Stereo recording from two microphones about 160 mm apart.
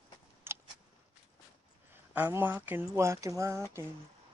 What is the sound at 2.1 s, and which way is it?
Speech, 10° right (ahead or behind).